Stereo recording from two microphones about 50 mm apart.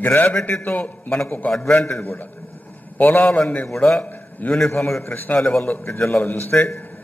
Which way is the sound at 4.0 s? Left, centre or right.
Left.